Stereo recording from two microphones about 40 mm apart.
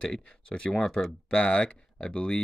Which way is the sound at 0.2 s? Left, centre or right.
Left.